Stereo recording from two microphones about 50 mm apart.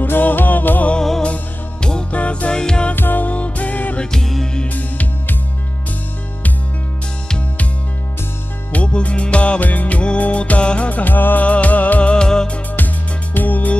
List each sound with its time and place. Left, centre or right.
0.0 s music: left
0.9 s music: centre
1.2 s music: left
2.5 s music: centre
3.0 s music: left
4.0 s music: centre
4.6 s music: left
8.7 s music: left
10.9 s music: left; by 12.4 s centre
12.7 s music: left